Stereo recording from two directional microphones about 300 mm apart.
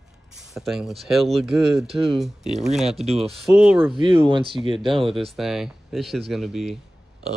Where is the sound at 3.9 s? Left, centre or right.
Centre.